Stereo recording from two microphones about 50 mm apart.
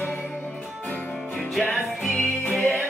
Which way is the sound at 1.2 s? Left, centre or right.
Centre.